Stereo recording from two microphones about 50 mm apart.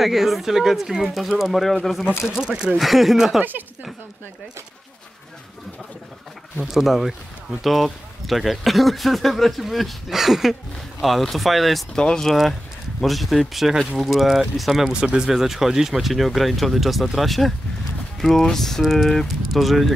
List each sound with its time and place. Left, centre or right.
0.0 s speech: centre
2.2 s speech: centre
2.8 s speech: centre
6.6 s speech: centre
11.9 s speech: centre
12.3 s speech: centre
14.9 s speech: centre
15.2 s speech: centre
18.9 s speech: centre